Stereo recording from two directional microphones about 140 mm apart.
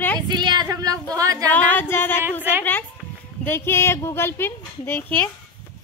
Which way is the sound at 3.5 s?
15° left (ahead or behind).